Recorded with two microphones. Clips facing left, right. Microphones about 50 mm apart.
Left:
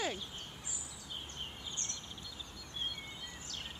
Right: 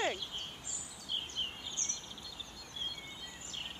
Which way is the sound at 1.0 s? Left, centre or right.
Right.